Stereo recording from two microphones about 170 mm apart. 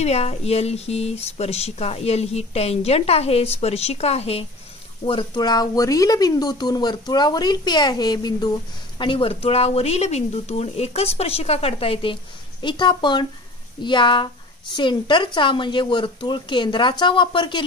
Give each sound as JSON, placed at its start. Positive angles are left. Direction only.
{"t": 0.0, "sound": "speech", "side_deg": 40}